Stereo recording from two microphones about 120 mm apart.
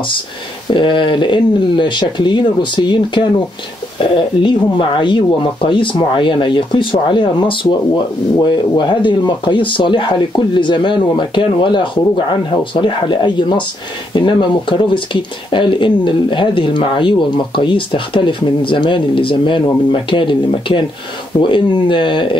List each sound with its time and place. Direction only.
0.7 s speech: 45° left (ahead or behind)